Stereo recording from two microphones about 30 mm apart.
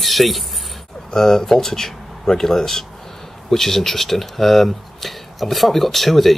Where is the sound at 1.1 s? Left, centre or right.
Centre.